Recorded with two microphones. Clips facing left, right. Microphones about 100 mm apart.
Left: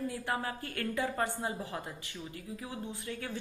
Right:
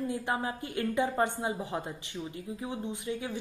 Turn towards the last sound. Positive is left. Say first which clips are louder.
# right 5 dB
turn(degrees=-15)  # may be behind; listen again after turning